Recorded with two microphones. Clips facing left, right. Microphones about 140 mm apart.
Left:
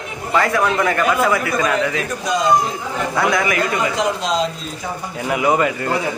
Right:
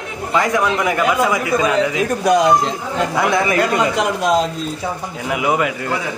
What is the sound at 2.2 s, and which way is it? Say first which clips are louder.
Speech: right 7 dB; 65° right (ahead or behind).